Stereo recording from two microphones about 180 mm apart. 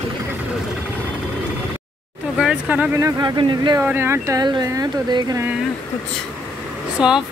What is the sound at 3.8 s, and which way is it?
Speech, 10° right (ahead or behind).